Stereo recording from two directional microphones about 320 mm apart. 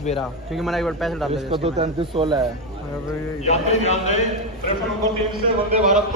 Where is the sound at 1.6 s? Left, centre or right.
Centre.